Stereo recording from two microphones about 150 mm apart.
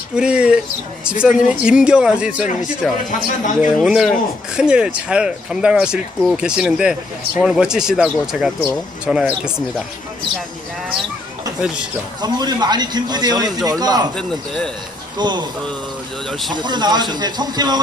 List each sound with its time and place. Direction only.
0.1 s speech: 5° right (ahead or behind)
11.6 s speech: 5° right (ahead or behind)
12.2 s a man's voice: 30° right (ahead or behind)
14.1 s speech: 5° left (ahead or behind)
15.1 s a man's voice: 30° right (ahead or behind)
16.3 s speech: centre (ahead or behind)
16.5 s a man's voice: 30° right (ahead or behind)